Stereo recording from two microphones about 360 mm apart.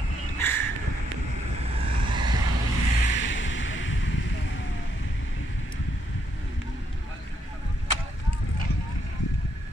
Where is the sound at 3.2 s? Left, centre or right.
Left.